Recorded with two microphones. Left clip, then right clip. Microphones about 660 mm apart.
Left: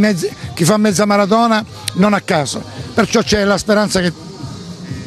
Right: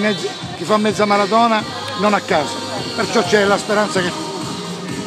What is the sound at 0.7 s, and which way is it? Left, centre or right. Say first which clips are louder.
A man's voice: left 1 dB; left.